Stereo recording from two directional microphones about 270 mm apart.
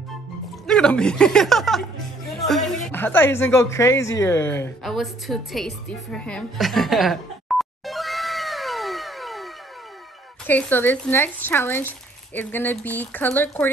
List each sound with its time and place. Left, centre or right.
0.7 s speech: centre